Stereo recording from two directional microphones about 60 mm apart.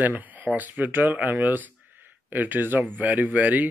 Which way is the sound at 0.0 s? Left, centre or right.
Right.